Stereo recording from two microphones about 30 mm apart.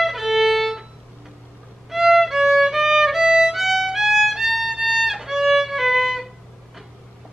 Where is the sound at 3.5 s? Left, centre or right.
Centre.